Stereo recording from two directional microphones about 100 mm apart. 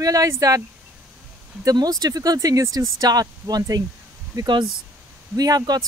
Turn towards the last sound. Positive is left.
turn(degrees=-40)  # may be behind; listen again after turning